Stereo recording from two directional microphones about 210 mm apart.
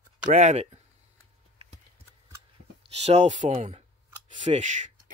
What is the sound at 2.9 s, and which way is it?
Speech, 30° right (ahead or behind).